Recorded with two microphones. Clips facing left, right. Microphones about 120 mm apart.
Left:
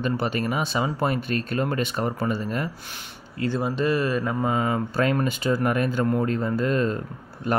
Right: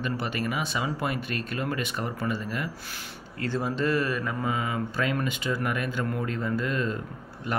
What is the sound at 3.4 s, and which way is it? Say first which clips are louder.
Speech: left 3 dB; 20° left (ahead or behind).